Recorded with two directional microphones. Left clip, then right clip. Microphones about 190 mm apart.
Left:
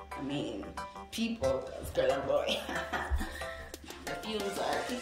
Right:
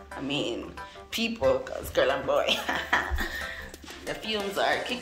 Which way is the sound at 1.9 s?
Centre (ahead or behind).